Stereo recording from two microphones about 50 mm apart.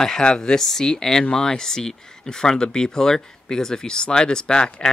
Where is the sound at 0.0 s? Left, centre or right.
Centre.